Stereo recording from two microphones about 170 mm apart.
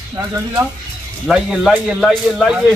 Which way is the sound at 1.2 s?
Centre (ahead or behind).